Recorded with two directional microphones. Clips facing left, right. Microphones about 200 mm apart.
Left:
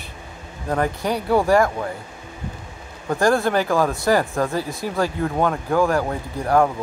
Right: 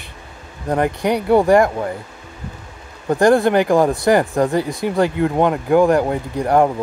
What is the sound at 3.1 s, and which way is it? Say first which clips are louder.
Speech: right 5 dB; 15° right (ahead or behind).